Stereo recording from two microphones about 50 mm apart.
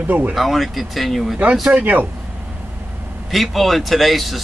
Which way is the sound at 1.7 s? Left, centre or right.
Right.